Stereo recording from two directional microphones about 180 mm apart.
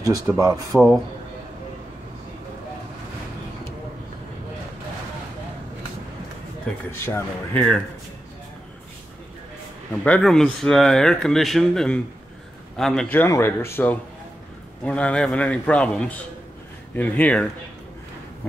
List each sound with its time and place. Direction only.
0.0 s speech: 20° right (ahead or behind)
0.7 s speech: centre (ahead or behind)
6.9 s a man's voice: 15° left (ahead or behind)
10.0 s a man's voice: 5° left (ahead or behind)